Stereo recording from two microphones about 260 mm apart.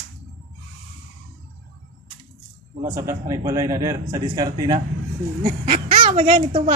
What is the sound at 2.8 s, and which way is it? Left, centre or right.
A man's voice, centre.